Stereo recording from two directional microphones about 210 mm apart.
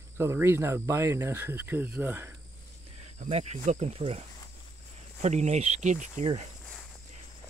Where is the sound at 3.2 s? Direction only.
30° right (ahead or behind).